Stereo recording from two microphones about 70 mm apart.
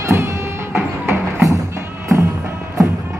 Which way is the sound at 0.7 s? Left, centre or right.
Right.